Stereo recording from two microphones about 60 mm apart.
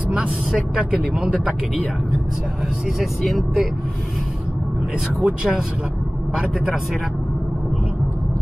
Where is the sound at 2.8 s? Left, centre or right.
Centre.